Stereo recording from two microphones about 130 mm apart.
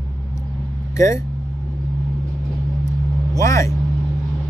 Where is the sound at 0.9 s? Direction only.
25° left (ahead or behind).